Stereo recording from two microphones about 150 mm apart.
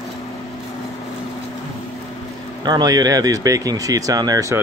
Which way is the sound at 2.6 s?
25° right (ahead or behind).